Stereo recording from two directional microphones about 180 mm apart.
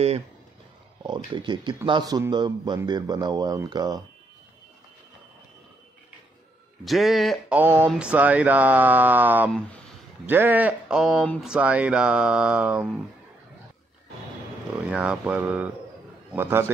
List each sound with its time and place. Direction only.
1.0 s speech: 25° right (ahead or behind)
6.8 s speech: centre (ahead or behind)
9.5 s speech: 5° left (ahead or behind)
10.2 s speech: 10° right (ahead or behind)
14.9 s speech: 5° right (ahead or behind)